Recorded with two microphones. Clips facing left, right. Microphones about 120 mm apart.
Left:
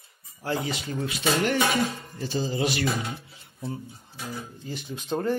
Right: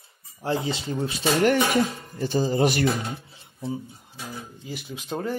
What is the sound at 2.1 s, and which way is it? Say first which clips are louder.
Speech: right 6 dB; 50° right (ahead or behind).